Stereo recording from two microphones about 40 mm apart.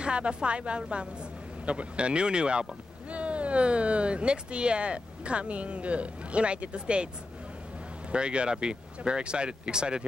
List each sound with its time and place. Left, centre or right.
0.0 s speech: right
8.1 s speech: right